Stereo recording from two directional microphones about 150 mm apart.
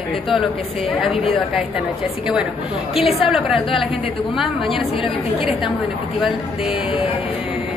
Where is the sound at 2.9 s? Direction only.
Centre (ahead or behind).